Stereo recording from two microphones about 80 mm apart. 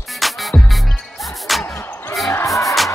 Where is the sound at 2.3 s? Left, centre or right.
Left.